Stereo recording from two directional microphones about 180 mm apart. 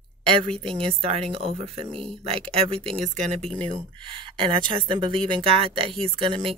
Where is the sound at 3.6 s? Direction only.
30° right (ahead or behind).